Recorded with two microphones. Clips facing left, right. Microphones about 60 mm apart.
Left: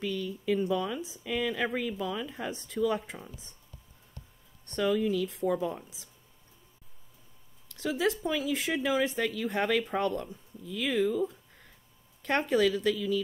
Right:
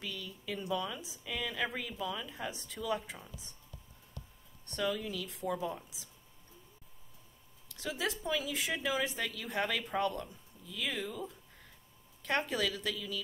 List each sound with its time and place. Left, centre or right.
0.0 s speech: left
4.7 s speech: left
7.6 s speech: left
12.2 s speech: left
12.9 s speech: left